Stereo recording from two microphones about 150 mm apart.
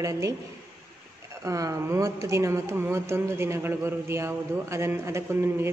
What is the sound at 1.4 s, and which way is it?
Speech, 20° right (ahead or behind).